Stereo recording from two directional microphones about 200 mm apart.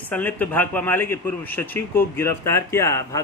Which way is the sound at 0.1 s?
10° left (ahead or behind).